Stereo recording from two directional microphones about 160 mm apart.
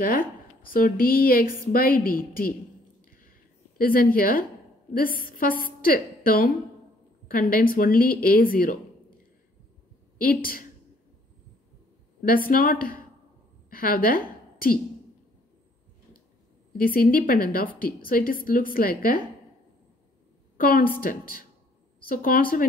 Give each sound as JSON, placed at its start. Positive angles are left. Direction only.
{"t": 0.7, "sound": "a woman's voice", "side_deg": 60}
{"t": 3.0, "sound": "a sound", "side_deg": 60}
{"t": 4.9, "sound": "a woman's voice", "side_deg": 65}
{"t": 10.2, "sound": "a woman's voice", "side_deg": 65}
{"t": 12.2, "sound": "a woman's voice", "side_deg": 65}
{"t": 16.7, "sound": "a woman's voice", "side_deg": 65}
{"t": 20.5, "sound": "a woman's voice", "side_deg": 65}